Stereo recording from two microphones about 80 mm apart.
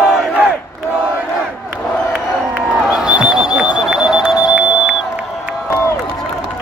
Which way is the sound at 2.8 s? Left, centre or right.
Centre.